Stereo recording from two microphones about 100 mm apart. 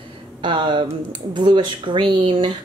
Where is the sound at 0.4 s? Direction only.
55° right (ahead or behind).